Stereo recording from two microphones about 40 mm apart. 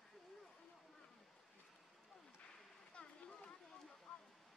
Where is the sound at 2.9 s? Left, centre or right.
Left.